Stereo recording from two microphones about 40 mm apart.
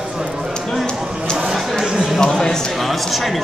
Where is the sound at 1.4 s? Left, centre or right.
Centre.